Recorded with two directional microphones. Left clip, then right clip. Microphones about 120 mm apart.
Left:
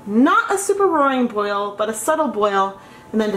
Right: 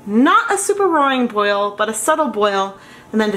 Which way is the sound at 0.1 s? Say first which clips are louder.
Right 2 dB; 40° right (ahead or behind).